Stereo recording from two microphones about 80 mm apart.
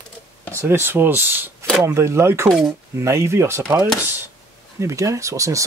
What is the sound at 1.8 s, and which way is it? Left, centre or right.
Speech, right.